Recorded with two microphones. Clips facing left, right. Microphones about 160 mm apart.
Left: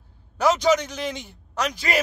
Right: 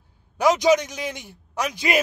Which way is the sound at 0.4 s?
15° right (ahead or behind).